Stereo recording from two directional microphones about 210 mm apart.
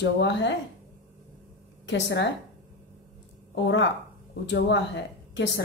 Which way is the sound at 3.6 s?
60° left (ahead or behind).